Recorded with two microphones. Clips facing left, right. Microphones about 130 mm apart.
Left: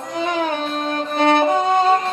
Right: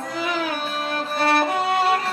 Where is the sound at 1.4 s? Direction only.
20° left (ahead or behind).